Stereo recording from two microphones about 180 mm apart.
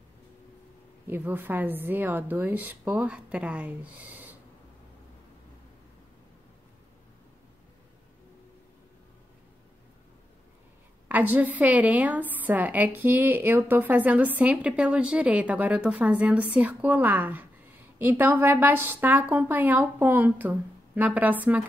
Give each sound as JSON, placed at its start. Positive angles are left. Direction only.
{"t": 1.0, "sound": "a woman's voice", "side_deg": -10}
{"t": 11.1, "sound": "a woman's voice", "side_deg": -10}